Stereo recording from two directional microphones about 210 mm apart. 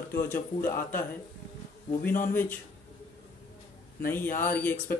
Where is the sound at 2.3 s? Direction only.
10° left (ahead or behind).